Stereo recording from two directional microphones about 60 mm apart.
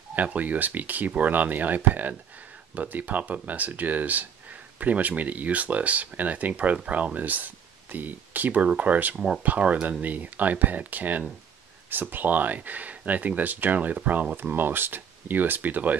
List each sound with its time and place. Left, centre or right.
0.1 s speech: right